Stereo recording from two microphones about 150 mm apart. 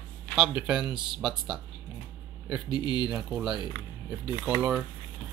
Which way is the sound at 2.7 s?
30° left (ahead or behind).